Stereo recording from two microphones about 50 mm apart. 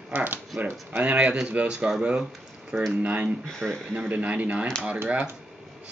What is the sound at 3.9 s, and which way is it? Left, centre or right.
Speech, right.